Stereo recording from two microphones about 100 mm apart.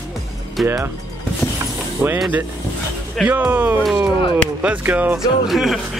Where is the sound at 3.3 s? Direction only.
20° right (ahead or behind).